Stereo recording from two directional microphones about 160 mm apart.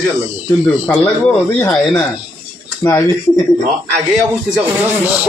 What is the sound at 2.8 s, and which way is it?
Speech, 15° left (ahead or behind).